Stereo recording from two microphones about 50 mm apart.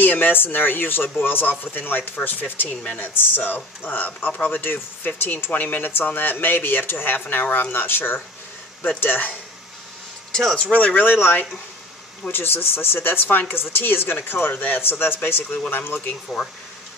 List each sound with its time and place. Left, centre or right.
0.0 s a man's voice: left
2.7 s speech: left
3.0 s a man's voice: left
5.5 s a man's voice: left
10.3 s speech: centre
10.6 s speech: left
11.1 s speech: left